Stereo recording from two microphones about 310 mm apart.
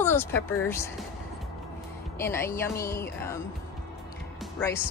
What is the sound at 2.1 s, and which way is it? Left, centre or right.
Speech, centre.